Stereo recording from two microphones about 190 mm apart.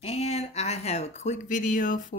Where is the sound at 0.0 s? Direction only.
35° left (ahead or behind).